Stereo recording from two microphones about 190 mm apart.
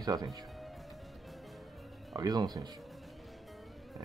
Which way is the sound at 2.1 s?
20° right (ahead or behind).